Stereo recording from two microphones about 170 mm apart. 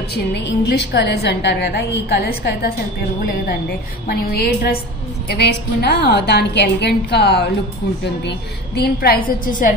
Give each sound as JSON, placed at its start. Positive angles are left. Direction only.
{"t": 0.1, "sound": "a woman's voice", "side_deg": 90}
{"t": 4.1, "sound": "a woman's voice", "side_deg": 65}